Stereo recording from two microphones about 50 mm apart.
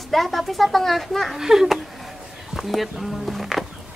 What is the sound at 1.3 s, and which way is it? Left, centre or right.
Speech, centre.